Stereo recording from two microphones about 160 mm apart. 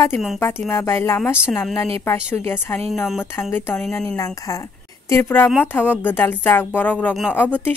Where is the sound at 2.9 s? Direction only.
Centre (ahead or behind).